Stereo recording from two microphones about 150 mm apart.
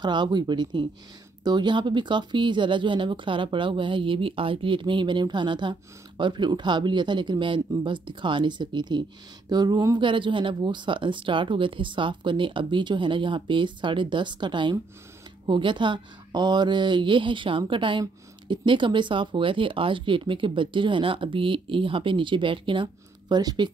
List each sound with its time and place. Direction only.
0.0 s speech: 30° right (ahead or behind)